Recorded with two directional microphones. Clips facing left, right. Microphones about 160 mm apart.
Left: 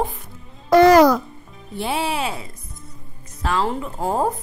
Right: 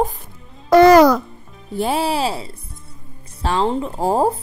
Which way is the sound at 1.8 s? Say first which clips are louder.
Right 4 dB; 40° right (ahead or behind).